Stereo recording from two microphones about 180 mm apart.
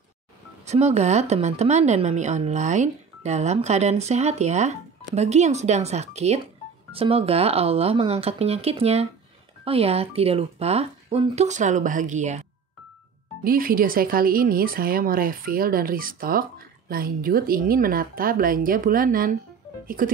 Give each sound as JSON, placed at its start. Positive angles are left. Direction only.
{"t": 0.7, "sound": "a woman's voice", "side_deg": -35}
{"t": 13.4, "sound": "speech", "side_deg": -55}